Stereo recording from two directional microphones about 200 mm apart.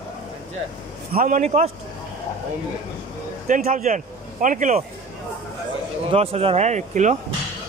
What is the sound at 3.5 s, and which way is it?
A man's voice, 35° right (ahead or behind).